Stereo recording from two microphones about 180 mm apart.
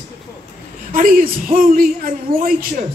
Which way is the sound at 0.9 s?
50° right (ahead or behind).